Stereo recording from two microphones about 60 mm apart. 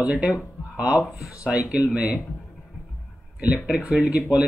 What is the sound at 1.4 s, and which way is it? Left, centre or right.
Speech, centre.